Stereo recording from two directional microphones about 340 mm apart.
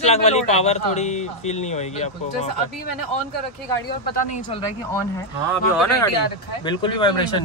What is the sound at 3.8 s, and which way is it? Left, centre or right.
Speech, left.